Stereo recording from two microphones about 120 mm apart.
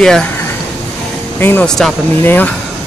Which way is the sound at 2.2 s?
15° left (ahead or behind).